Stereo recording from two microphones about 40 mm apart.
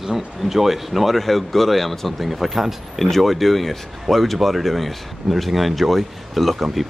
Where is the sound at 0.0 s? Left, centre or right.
Centre.